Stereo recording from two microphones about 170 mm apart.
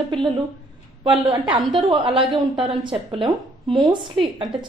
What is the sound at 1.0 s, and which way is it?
A woman's voice, 25° right (ahead or behind).